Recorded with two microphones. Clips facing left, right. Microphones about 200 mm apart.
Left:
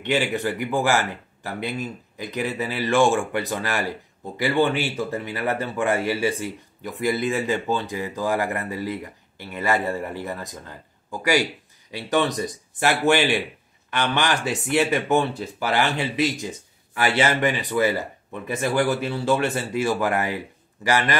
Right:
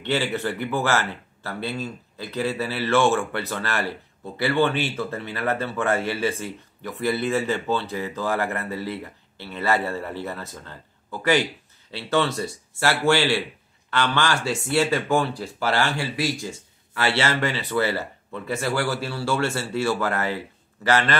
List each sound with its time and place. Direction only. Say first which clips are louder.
0.0 s speech: left 2 dB; 15° left (ahead or behind)